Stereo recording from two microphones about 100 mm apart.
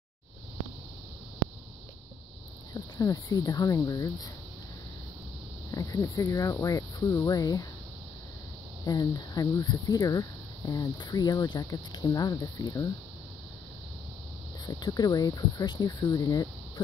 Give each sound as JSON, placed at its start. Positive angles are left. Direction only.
{"t": 2.7, "sound": "speech", "side_deg": 35}
{"t": 5.7, "sound": "speech", "side_deg": 35}
{"t": 8.8, "sound": "speech", "side_deg": 40}
{"t": 10.7, "sound": "speech", "side_deg": 45}
{"t": 14.7, "sound": "speech", "side_deg": 40}